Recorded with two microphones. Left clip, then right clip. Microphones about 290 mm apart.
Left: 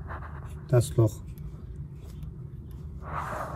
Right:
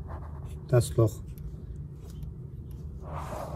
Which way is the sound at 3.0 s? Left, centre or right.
Centre.